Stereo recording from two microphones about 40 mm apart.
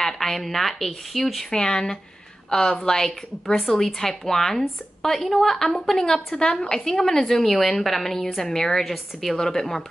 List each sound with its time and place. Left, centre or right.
0.0 s speech: centre
1.5 s a woman's voice: centre